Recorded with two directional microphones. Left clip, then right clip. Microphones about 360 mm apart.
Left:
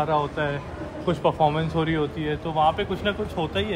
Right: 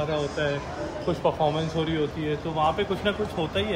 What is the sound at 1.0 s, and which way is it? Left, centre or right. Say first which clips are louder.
Speech: left 3 dB; left.